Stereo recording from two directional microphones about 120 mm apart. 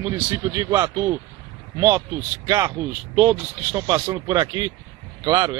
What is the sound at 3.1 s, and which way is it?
Speech, 20° right (ahead or behind).